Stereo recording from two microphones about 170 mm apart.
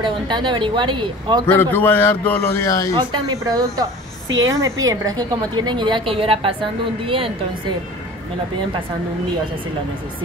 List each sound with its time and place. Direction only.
0.0 s a woman's voice: 25° right (ahead or behind)
1.4 s a man's voice: 15° left (ahead or behind)
2.9 s a woman's voice: 25° right (ahead or behind)